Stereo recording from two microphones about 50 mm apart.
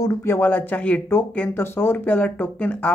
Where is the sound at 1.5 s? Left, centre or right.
Left.